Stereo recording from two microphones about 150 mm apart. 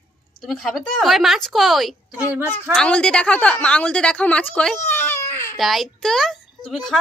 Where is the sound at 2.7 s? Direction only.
5° left (ahead or behind).